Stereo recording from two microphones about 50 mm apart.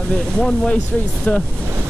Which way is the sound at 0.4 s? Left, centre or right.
Centre.